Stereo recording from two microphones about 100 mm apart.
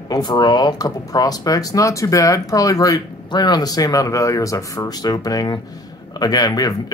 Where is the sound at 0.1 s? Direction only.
45° left (ahead or behind).